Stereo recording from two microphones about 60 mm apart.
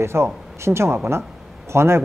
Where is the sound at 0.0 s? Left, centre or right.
Right.